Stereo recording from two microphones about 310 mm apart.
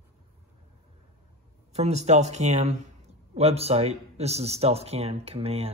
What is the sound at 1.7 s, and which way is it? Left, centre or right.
Speech, right.